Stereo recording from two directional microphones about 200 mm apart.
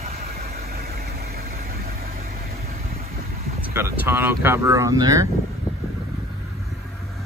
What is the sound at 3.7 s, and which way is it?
Speech, 10° right (ahead or behind).